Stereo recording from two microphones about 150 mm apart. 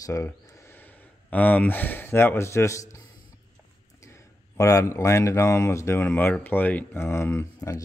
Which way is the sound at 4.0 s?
20° left (ahead or behind).